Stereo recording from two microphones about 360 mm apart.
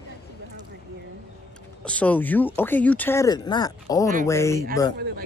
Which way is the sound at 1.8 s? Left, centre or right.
Centre.